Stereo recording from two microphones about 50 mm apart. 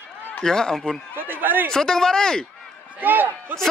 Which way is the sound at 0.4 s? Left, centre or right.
Centre.